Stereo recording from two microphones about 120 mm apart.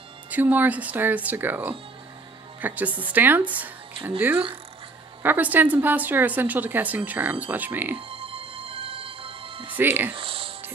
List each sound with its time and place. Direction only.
0.3 s a woman's voice: 15° right (ahead or behind)
5.2 s a woman's voice: 15° right (ahead or behind)
8.1 s music: 50° right (ahead or behind)
9.7 s speech: 15° right (ahead or behind)
10.1 s music: 50° right (ahead or behind)